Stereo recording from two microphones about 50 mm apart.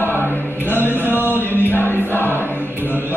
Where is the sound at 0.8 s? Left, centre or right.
Left.